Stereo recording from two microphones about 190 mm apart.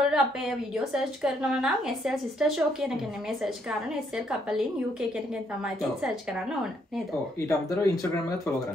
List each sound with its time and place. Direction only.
0.1 s a woman's voice: centre (ahead or behind)
7.3 s speech: 15° left (ahead or behind)